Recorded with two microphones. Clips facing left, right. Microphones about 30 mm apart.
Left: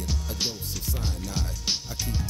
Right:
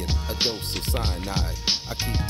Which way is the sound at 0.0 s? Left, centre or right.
Right.